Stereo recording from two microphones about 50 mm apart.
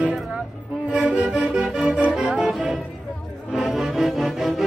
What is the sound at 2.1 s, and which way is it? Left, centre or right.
Music, centre.